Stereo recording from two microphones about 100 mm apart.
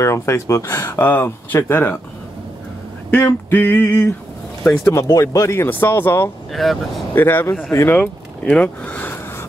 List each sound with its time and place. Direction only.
0.0 s speech: 30° left (ahead or behind)
3.2 s speech: 25° left (ahead or behind)
6.5 s speech: centre (ahead or behind)
7.2 s speech: 25° left (ahead or behind)
8.0 s speech: 10° left (ahead or behind)
8.9 s a sound: 25° left (ahead or behind)